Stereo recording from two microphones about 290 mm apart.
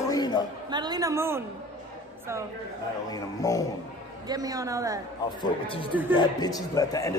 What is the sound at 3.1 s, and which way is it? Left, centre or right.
Speech, centre.